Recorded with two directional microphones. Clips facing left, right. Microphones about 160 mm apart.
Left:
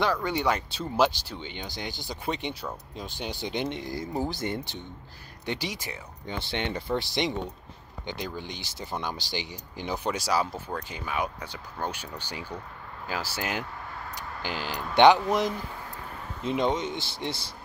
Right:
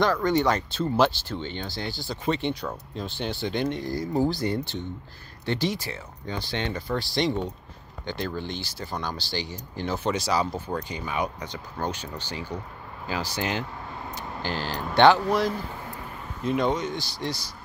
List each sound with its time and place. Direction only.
0.0 s speech: 10° left (ahead or behind)
16.4 s speech: 20° left (ahead or behind)